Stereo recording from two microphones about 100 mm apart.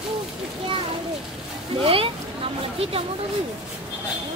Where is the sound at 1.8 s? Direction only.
70° right (ahead or behind).